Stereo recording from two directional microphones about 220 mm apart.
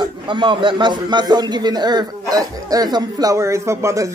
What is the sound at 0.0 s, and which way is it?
A man's voice, 20° right (ahead or behind).